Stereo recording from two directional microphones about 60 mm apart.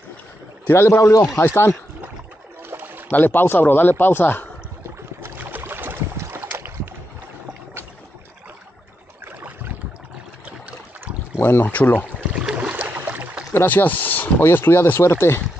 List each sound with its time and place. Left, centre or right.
0.7 s speech: left
1.4 s speech: left
2.7 s a sound: right
3.1 s speech: left
5.6 s boat: right
9.2 s boat: right
11.3 s speech: left
12.3 s boat: centre
13.5 s speech: left